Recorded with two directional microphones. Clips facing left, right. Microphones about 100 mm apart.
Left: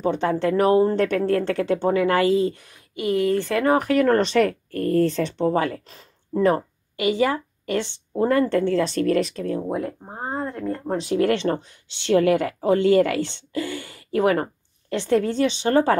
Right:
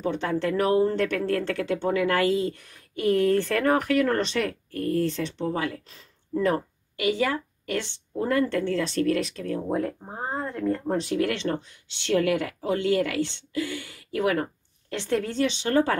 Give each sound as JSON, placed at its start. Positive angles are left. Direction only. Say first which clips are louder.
{"t": 0.0, "sound": "speech", "louder": "left 5 dB", "side_deg": 30}
{"t": 3.0, "sound": "speech", "louder": "even", "side_deg": 5}
{"t": 3.8, "sound": "speech", "louder": "left 5 dB", "side_deg": 40}
{"t": 9.6, "sound": "speech", "louder": "left 1 dB", "side_deg": 10}
{"t": 11.1, "sound": "speech", "louder": "left 5 dB", "side_deg": 40}